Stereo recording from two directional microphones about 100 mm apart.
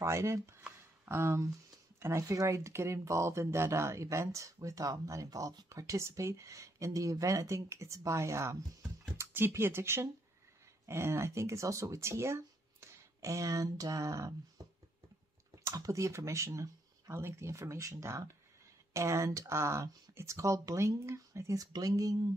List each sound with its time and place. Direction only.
0.0 s speech: 30° right (ahead or behind)
14.6 s music: 35° right (ahead or behind)
15.6 s speech: 35° right (ahead or behind)